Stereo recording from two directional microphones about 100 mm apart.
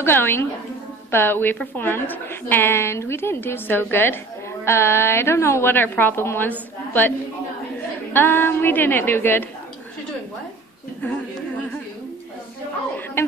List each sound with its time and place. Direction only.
0.0 s a woman's voice: 20° left (ahead or behind)
11.0 s a woman's voice: 20° left (ahead or behind)